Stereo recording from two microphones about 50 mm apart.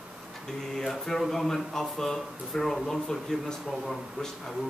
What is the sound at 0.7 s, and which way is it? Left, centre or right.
Speech, centre.